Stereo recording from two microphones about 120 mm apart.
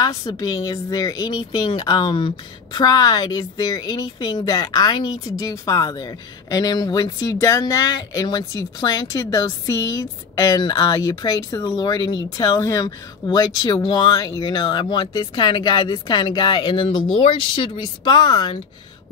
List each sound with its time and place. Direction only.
0.0 s a woman's voice: 30° left (ahead or behind)